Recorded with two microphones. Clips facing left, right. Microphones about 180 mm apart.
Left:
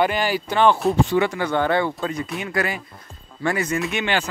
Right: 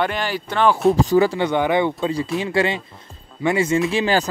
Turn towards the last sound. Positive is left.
turn(degrees=-35)  # may be behind; listen again after turning